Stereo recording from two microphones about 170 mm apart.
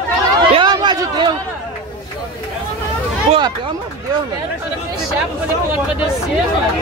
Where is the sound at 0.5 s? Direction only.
25° right (ahead or behind).